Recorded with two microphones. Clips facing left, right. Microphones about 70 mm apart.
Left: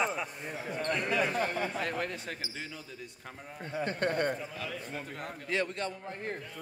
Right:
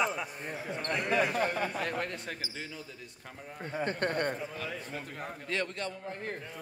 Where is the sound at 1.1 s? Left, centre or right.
Right.